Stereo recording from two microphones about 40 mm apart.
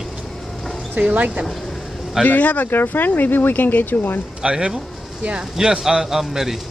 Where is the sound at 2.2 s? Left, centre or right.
Left.